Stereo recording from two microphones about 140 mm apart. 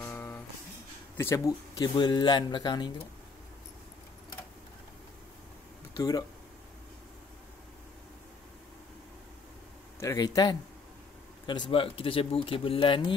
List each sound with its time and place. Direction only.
0.0 s music: 15° left (ahead or behind)
1.1 s a man's voice: 20° left (ahead or behind)
5.9 s speech: 25° left (ahead or behind)
9.9 s speech: 25° left (ahead or behind)
11.7 s a man's voice: 40° left (ahead or behind)